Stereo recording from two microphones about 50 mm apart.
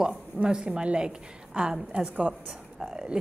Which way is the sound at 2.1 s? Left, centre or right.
Right.